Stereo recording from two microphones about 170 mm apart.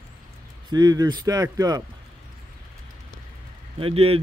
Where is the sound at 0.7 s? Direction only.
25° right (ahead or behind).